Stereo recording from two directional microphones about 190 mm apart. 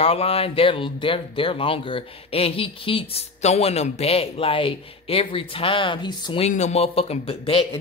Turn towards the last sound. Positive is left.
turn(degrees=30)  # may be behind; listen again after turning